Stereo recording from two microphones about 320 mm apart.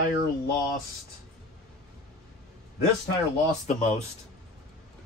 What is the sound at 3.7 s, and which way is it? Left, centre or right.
Speech, left.